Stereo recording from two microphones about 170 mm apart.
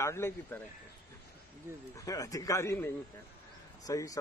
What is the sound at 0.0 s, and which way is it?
Speech, 15° left (ahead or behind).